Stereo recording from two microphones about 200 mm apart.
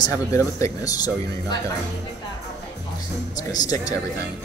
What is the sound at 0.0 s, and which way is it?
Speech, 15° left (ahead or behind).